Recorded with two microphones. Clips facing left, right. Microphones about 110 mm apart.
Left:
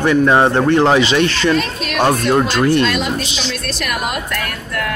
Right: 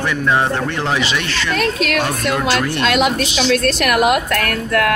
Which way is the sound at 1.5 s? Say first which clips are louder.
Even; 85° right.